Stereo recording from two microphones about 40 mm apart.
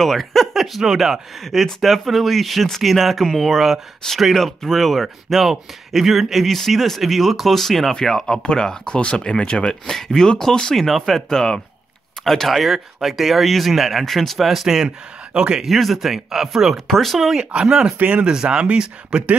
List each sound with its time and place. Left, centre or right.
0.0 s speech: centre
1.4 s speech: centre
5.0 s speech: centre
10.8 s speech: centre
15.3 s speech: right
15.6 s speech: centre
16.8 s speech: centre
17.5 s speech: right
18.0 s speech: right